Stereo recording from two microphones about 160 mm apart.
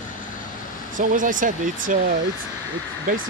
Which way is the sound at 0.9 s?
55° right (ahead or behind).